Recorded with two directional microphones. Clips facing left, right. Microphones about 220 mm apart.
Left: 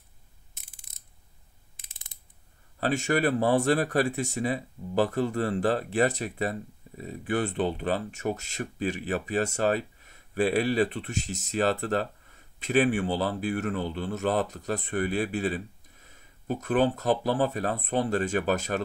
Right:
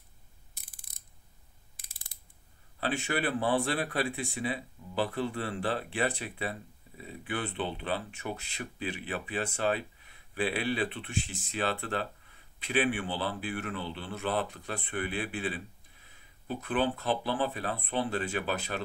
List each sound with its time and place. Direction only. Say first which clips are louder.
1.9 s ratchet: left 1 dB; 20° left (ahead or behind)
2.8 s speech: left 6 dB; 45° left (ahead or behind)